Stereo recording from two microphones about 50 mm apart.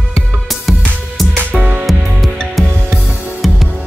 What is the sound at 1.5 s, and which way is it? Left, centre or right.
Music, right.